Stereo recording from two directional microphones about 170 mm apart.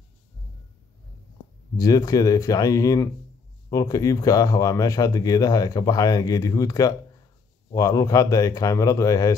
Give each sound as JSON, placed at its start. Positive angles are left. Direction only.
{"t": 1.8, "sound": "speech", "side_deg": 20}